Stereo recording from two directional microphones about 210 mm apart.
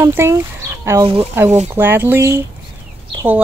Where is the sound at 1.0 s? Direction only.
25° right (ahead or behind).